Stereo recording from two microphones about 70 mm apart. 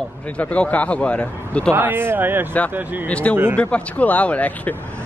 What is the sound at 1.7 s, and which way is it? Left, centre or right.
Speech, right.